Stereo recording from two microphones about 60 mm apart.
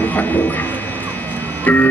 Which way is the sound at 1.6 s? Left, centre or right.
Left.